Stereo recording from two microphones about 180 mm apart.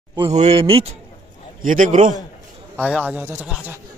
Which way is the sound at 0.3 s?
35° right (ahead or behind).